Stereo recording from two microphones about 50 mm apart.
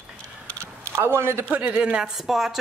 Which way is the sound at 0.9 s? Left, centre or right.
Right.